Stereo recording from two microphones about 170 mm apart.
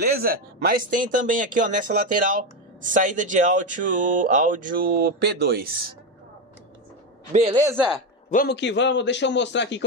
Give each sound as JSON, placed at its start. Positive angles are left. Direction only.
{"t": 0.0, "sound": "speech", "side_deg": -60}
{"t": 7.5, "sound": "speech", "side_deg": -20}
{"t": 8.5, "sound": "a man's voice", "side_deg": 90}